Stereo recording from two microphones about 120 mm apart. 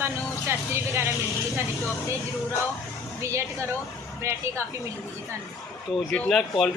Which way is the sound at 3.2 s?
25° right (ahead or behind).